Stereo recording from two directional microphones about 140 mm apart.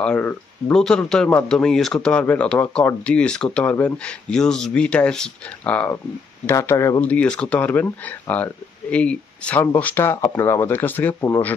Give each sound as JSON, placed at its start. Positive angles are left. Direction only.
{"t": 0.0, "sound": "speech", "side_deg": 10}
{"t": 7.1, "sound": "speech", "side_deg": 10}